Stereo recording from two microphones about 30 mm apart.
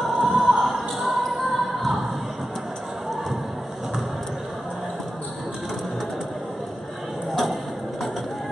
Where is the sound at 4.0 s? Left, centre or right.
Centre.